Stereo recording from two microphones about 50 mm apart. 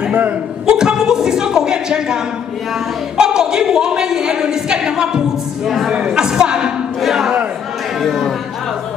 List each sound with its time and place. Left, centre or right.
0.7 s a woman's voice: centre
3.2 s a woman's voice: centre
5.7 s speech: centre
5.9 s a sound: right; by 7.3 s centre
8.0 s speech: centre